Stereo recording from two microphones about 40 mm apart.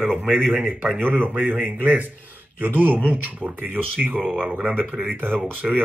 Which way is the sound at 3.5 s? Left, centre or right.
Right.